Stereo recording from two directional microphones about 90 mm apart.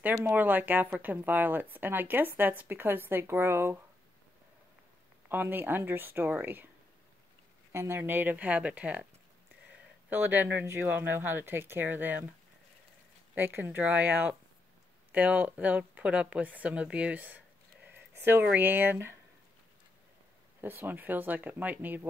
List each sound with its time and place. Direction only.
0.2 s speech: 25° right (ahead or behind)
5.3 s speech: 20° right (ahead or behind)
7.7 s speech: 25° right (ahead or behind)
10.0 s speech: 20° right (ahead or behind)
13.3 s speech: 25° right (ahead or behind)
20.6 s speech: 20° right (ahead or behind)